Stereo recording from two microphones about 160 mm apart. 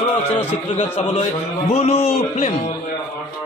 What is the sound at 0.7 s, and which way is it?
A man's voice, 40° left (ahead or behind).